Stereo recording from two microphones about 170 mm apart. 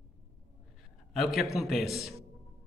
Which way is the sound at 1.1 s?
Centre (ahead or behind).